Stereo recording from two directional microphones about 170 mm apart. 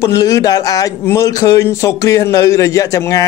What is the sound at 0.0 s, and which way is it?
A man's voice, 20° left (ahead or behind).